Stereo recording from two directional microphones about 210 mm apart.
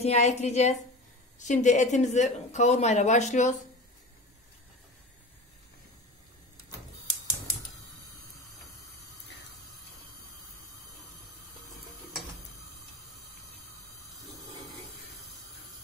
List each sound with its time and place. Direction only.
0.0 s speech: 30° left (ahead or behind)